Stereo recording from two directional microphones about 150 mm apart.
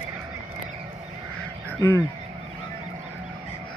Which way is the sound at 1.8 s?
15° left (ahead or behind).